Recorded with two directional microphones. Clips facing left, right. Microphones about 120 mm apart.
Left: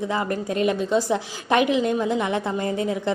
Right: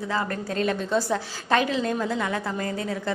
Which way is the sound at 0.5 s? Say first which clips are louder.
Left 3 dB; 15° left (ahead or behind).